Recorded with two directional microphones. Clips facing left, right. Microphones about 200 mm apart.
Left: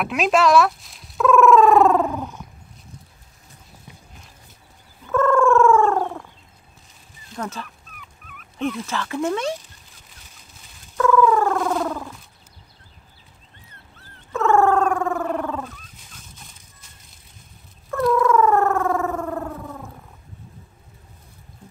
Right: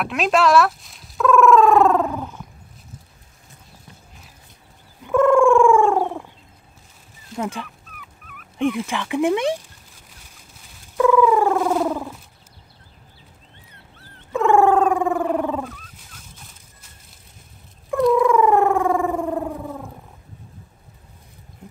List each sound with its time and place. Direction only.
0.0 s speech: centre (ahead or behind)
5.0 s a sound: 15° right (ahead or behind)
7.3 s dog: 10° right (ahead or behind)
8.5 s speech: 15° right (ahead or behind)
11.0 s cat: 15° right (ahead or behind)
14.3 s dog: 15° right (ahead or behind)
18.1 s a sound: 15° right (ahead or behind)